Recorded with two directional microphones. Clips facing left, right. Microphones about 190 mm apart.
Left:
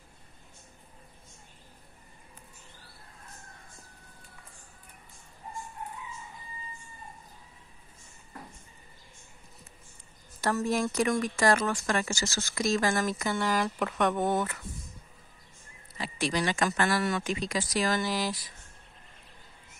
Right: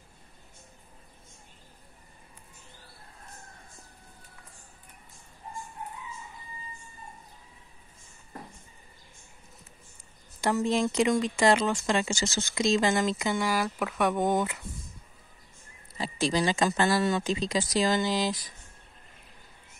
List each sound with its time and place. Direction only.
10.4 s speech: 15° right (ahead or behind)
16.0 s speech: 30° right (ahead or behind)